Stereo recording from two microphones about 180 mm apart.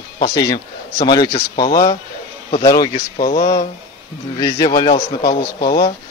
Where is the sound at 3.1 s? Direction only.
50° left (ahead or behind).